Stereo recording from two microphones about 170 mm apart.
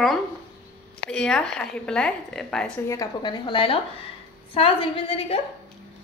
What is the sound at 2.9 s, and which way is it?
Speech, 25° left (ahead or behind).